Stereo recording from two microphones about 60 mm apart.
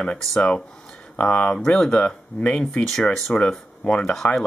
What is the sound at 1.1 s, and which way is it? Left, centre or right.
Speech, centre.